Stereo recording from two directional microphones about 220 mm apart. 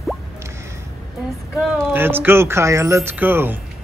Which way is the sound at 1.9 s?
10° right (ahead or behind).